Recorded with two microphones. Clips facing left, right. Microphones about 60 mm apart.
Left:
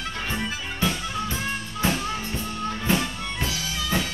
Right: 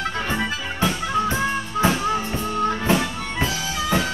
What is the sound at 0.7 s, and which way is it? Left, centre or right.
Music, right.